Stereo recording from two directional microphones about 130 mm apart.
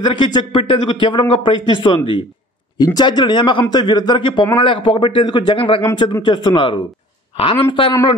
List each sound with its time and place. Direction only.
0.0 s a man's voice: 35° left (ahead or behind)